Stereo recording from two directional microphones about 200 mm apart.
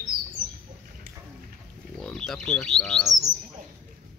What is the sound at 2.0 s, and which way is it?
Speech, 5° left (ahead or behind).